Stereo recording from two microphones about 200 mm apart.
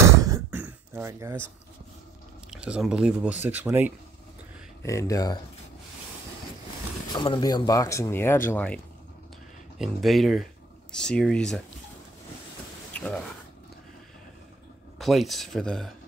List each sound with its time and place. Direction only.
0.0 s a sound: 15° right (ahead or behind)
2.5 s speech: 5° right (ahead or behind)
4.8 s speech: 15° left (ahead or behind)
7.1 s speech: 25° left (ahead or behind); by 11.6 s centre (ahead or behind)
12.9 s a sound: 5° left (ahead or behind)
15.0 s speech: centre (ahead or behind)